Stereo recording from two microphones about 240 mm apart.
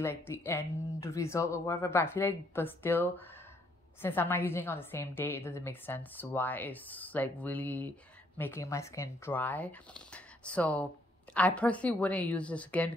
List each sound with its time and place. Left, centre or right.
0.0 s a woman's voice: centre